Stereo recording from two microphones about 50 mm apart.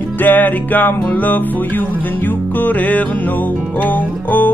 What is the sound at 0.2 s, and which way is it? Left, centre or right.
Music, left.